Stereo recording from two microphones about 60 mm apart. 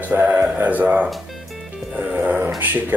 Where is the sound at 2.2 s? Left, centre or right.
Right.